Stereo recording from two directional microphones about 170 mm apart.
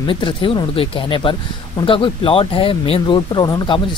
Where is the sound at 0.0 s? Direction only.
30° left (ahead or behind).